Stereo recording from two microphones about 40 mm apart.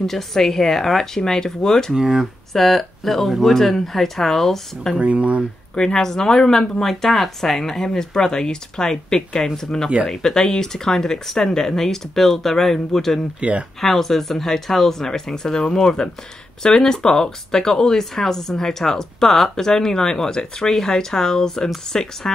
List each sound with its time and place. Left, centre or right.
0.0 s speech: centre
2.0 s speech: centre
2.5 s speech: centre
4.9 s speech: right
5.8 s speech: centre
13.4 s speech: right
13.7 s speech: centre